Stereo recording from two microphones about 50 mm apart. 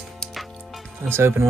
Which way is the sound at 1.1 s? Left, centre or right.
Right.